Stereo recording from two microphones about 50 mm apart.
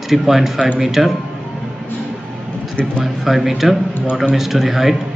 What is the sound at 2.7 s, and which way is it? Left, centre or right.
Speech, centre.